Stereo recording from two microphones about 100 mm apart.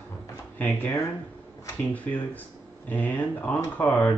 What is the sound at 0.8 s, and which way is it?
Speech, 30° left (ahead or behind).